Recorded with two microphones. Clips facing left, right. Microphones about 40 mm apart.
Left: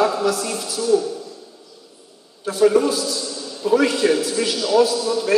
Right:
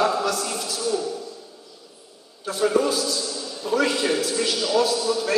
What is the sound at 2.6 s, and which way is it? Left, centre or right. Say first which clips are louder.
A man's voice: left 5 dB; centre.